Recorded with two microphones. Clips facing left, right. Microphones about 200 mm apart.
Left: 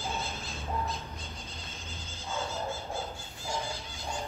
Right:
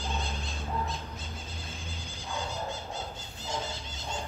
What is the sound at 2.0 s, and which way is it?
Music, 15° right (ahead or behind).